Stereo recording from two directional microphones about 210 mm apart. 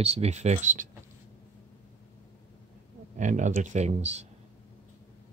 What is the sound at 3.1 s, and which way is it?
Speech, 35° right (ahead or behind).